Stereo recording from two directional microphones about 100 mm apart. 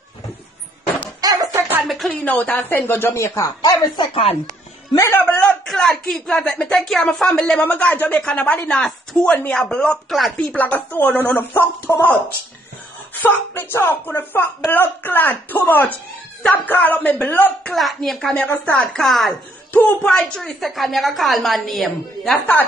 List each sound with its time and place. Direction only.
1.2 s music: 35° right (ahead or behind)
2.0 s speech: 15° left (ahead or behind); by 3.5 s 30° left (ahead or behind)
3.6 s a woman's voice: 45° left (ahead or behind)
4.9 s a man's voice: 30° left (ahead or behind)
5.2 s a sound: 15° left (ahead or behind)
5.7 s a woman's voice: centre (ahead or behind)
9.3 s a woman's voice: 15° left (ahead or behind)
10.3 s speech: 15° left (ahead or behind)
13.6 s speech: 25° left (ahead or behind)
17.7 s a woman's voice: centre (ahead or behind)
19.7 s a woman's voice: 15° left (ahead or behind)